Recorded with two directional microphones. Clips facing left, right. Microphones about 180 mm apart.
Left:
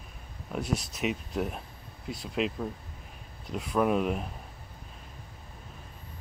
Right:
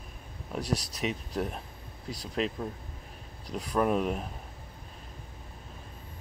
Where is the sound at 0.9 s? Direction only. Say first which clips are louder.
Left 1 dB; centre (ahead or behind).